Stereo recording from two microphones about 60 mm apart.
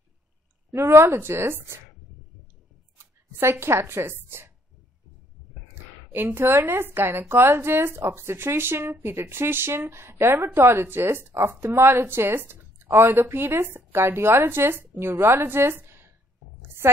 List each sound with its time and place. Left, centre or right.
0.7 s speech: right
3.0 s a woman's voice: right
6.2 s a woman's voice: right